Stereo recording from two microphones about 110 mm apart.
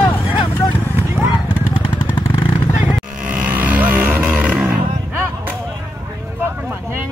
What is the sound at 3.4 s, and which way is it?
Music, 15° right (ahead or behind).